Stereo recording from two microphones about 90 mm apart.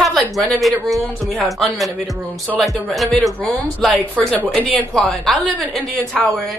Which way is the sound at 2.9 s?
Centre (ahead or behind).